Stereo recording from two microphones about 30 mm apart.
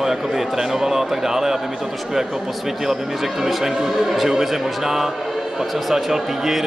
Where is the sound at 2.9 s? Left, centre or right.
Centre.